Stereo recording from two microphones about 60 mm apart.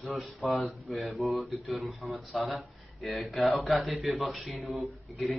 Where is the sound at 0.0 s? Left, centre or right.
Centre.